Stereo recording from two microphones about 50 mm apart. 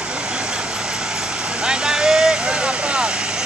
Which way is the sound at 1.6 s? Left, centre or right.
Centre.